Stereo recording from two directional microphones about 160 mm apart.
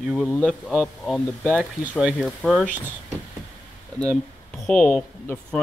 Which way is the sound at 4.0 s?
5° left (ahead or behind).